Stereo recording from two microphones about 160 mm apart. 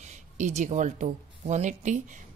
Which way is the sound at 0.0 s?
45° right (ahead or behind).